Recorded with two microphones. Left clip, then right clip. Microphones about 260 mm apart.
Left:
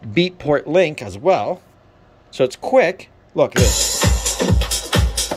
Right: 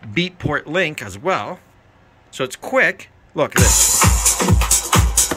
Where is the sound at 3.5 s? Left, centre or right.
Right.